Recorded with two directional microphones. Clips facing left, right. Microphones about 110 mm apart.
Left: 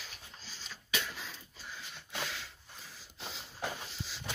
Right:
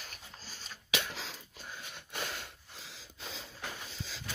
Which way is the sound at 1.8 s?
50° right (ahead or behind).